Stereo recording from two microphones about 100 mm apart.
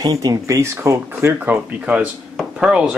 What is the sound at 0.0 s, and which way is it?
Speech, 40° right (ahead or behind).